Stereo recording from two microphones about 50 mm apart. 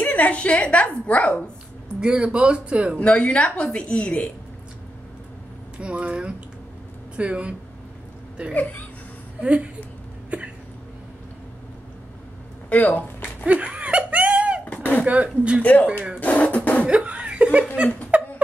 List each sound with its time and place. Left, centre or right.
0.0 s a woman's voice: left
2.0 s speech: centre
3.0 s a woman's voice: left
5.8 s speech: right
9.4 s speech: right
10.3 s hiccup: right
12.6 s speech: left
13.5 s laughter: right
14.6 s a sound: left
15.0 s speech: right
15.6 s speech: left
16.8 s speech: right
18.1 s a sound: right